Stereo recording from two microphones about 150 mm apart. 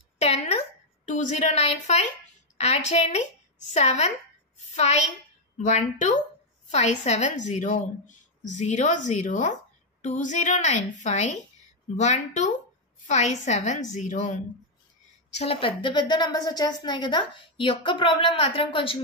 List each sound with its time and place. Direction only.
0.2 s a sound: 45° left (ahead or behind)
2.5 s a woman's voice: 45° left (ahead or behind)
15.3 s a woman's voice: 40° left (ahead or behind)